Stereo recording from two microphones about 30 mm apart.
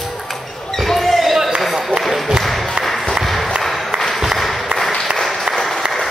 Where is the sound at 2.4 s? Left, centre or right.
Centre.